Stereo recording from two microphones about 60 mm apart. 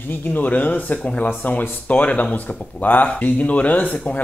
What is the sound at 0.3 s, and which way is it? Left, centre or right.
A man's voice, left.